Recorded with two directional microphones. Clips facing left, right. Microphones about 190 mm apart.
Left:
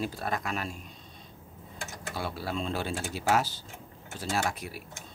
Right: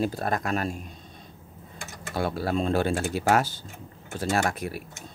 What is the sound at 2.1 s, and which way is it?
Speech, 50° right (ahead or behind).